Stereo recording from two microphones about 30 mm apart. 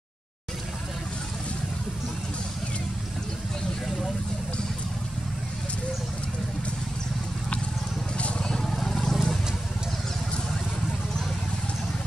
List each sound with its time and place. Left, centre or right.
8.4 s vehicle: left
8.6 s vehicle: centre